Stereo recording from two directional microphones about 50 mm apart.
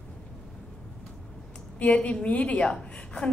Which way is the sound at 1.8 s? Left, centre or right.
Left.